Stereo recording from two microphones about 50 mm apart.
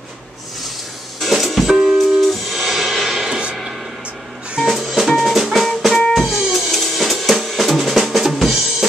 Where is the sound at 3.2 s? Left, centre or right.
Centre.